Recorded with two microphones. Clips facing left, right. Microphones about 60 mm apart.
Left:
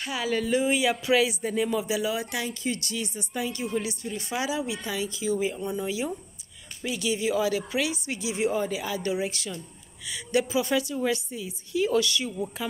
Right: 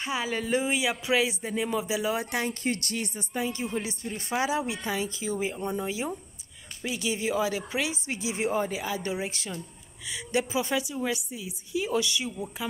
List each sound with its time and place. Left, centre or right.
0.0 s a woman's voice: right
2.0 s speech: right
3.3 s a woman's voice: right
5.6 s a woman's voice: right
5.9 s a woman's voice: right